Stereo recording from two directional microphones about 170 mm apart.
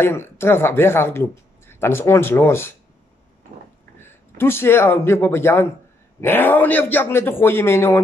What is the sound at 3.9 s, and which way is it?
A man's voice, 15° left (ahead or behind).